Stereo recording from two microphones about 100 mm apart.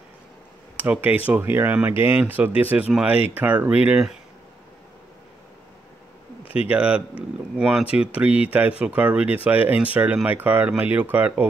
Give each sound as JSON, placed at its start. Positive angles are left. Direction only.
{"t": 1.2, "sound": "speech", "side_deg": -20}
{"t": 6.4, "sound": "a sound", "side_deg": 70}
{"t": 6.7, "sound": "speech", "side_deg": -10}